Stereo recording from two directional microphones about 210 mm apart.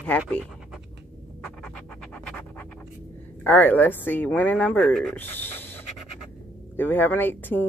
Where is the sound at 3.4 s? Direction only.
10° left (ahead or behind).